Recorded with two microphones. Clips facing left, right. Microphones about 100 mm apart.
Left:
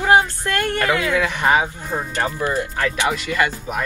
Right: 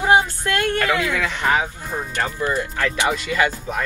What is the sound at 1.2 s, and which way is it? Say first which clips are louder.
Speech: left 3 dB; 20° left (ahead or behind).